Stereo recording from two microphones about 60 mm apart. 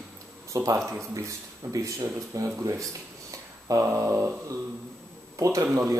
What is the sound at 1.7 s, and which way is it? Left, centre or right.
Speech, right.